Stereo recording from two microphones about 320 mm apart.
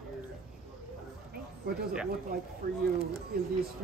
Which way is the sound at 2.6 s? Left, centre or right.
Right.